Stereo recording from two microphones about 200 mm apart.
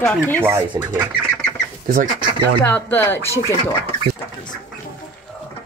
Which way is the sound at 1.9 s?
40° right (ahead or behind).